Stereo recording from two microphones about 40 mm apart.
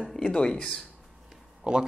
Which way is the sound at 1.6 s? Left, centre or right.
Right.